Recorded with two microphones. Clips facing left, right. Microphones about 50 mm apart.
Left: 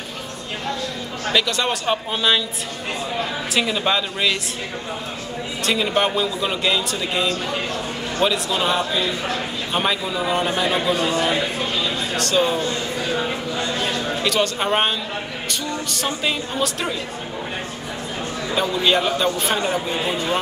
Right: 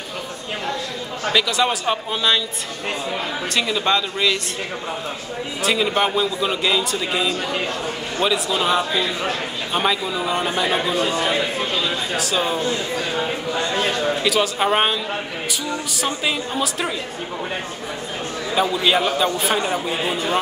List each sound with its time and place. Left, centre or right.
1.3 s a man's voice: centre
3.5 s speech: centre
5.6 s a man's voice: centre
12.2 s a man's voice: centre
14.2 s a man's voice: centre
18.5 s a man's voice: centre